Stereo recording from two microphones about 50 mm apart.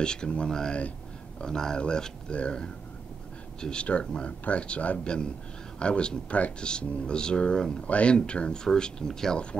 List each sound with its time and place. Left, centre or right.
0.0 s a man's voice: centre